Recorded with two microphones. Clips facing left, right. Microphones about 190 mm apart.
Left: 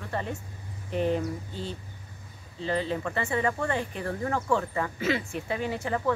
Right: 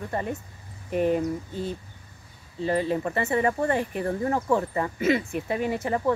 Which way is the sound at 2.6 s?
45° right (ahead or behind).